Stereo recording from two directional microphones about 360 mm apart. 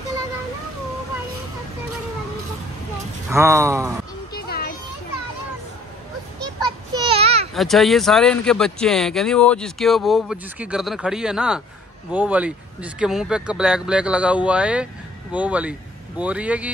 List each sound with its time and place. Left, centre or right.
3.3 s speech: centre
4.3 s music: left
7.1 s a sound: centre
7.5 s speech: centre